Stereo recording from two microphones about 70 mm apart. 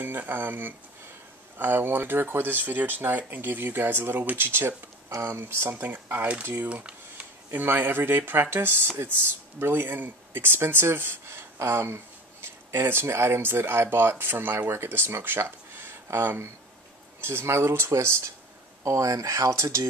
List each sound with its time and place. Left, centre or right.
0.0 s speech: right
6.7 s a sound: centre
7.5 s speech: right
18.9 s speech: right